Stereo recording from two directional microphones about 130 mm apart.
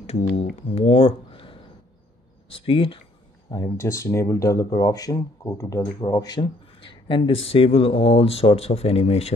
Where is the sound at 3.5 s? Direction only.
20° left (ahead or behind).